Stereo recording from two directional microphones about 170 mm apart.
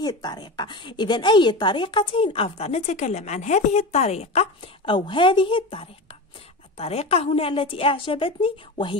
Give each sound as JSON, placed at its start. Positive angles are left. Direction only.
{"t": 0.0, "sound": "a woman's voice", "side_deg": 25}